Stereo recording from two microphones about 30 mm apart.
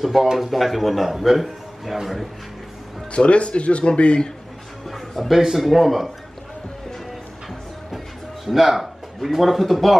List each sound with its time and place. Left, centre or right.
0.0 s a man's voice: centre
3.1 s speech: left
5.3 s speech: centre
8.5 s a man's voice: centre